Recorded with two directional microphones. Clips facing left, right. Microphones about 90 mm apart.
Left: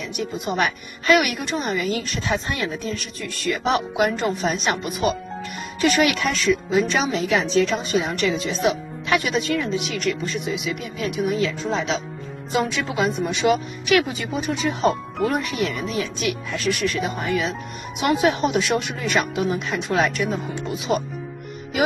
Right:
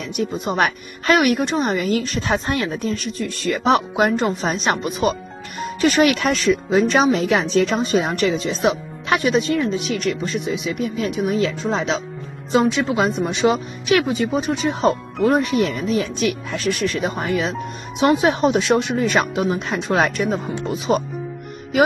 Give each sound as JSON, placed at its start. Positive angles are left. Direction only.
{"t": 0.1, "sound": "a woman's voice", "side_deg": -40}